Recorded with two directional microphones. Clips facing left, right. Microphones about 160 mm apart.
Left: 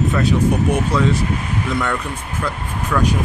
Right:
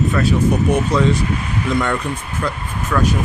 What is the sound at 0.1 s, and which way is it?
Speech, 15° left (ahead or behind).